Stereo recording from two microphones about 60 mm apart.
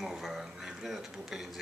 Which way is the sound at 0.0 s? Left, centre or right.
Centre.